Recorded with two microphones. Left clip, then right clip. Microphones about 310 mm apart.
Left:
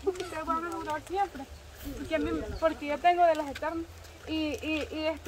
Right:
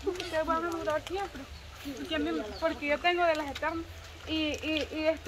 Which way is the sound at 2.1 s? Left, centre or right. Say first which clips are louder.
Left 2 dB; left.